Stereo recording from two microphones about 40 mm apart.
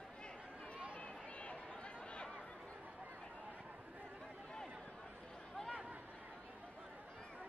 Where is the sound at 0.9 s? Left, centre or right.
Left.